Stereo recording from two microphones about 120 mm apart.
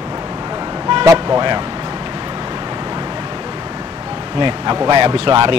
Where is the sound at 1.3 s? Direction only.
40° right (ahead or behind).